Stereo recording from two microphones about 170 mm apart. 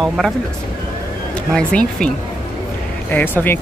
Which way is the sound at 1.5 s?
5° left (ahead or behind).